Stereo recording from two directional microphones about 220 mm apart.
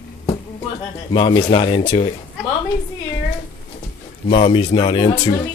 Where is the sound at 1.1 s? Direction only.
20° left (ahead or behind).